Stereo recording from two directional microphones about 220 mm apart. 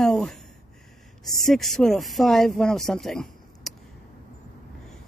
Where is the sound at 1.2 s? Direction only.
Centre (ahead or behind).